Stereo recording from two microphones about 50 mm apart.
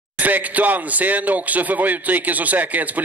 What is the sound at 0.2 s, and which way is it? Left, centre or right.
Speech, right.